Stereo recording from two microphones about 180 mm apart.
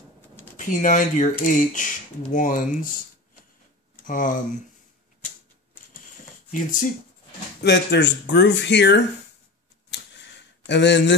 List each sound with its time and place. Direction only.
0.6 s speech: 45° left (ahead or behind)
4.1 s speech: 50° left (ahead or behind)
6.5 s speech: 50° left (ahead or behind)
7.6 s speech: 70° left (ahead or behind)
9.9 s a sound: 85° left
10.7 s speech: 75° left (ahead or behind)